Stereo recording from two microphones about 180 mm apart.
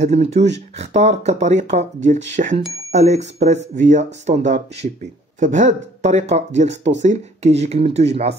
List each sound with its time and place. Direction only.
0.0 s speech: 40° right (ahead or behind)